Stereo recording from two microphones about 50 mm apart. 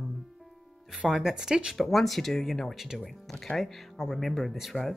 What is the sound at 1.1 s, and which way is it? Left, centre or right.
Speech, centre.